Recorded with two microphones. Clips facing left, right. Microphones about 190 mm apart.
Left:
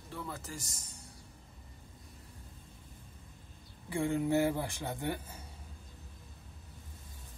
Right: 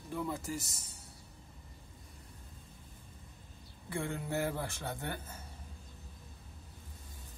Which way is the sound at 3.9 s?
15° left (ahead or behind).